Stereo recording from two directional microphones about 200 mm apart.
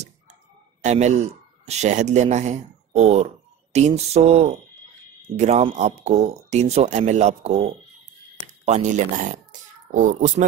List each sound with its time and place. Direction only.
0.8 s a man's voice: 35° right (ahead or behind)